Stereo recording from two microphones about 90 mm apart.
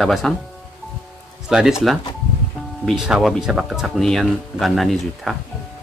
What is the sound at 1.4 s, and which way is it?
Speech, 5° right (ahead or behind).